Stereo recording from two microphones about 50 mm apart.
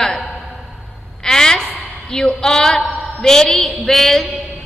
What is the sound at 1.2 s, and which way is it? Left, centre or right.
A man's voice, centre.